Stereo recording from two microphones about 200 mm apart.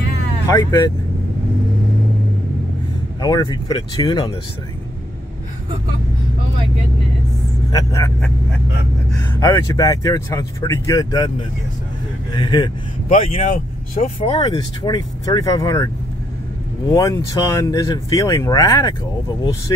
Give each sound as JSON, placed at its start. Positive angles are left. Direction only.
{"t": 0.5, "sound": "speech", "side_deg": 15}
{"t": 3.2, "sound": "speech", "side_deg": 20}
{"t": 7.7, "sound": "speech", "side_deg": 15}
{"t": 9.3, "sound": "speech", "side_deg": 15}
{"t": 16.9, "sound": "speech", "side_deg": 15}